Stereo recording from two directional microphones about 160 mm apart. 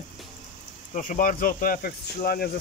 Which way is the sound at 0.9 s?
55° left (ahead or behind).